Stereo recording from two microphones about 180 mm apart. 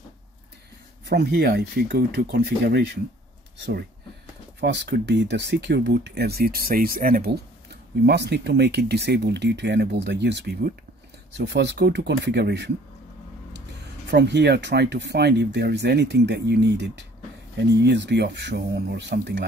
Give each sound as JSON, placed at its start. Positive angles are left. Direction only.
{"t": 1.0, "sound": "speech", "side_deg": -70}
{"t": 8.0, "sound": "speech", "side_deg": -65}
{"t": 11.3, "sound": "speech", "side_deg": -75}
{"t": 14.1, "sound": "speech", "side_deg": -70}